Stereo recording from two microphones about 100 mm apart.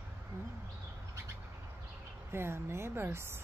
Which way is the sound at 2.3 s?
25° right (ahead or behind).